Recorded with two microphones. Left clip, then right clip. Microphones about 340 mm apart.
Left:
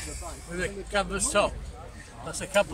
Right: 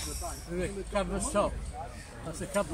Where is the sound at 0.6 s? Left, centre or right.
Left.